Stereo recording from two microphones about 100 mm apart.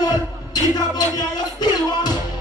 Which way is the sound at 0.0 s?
40° left (ahead or behind).